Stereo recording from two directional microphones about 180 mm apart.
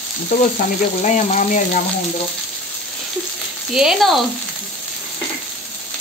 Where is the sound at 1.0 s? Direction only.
40° left (ahead or behind).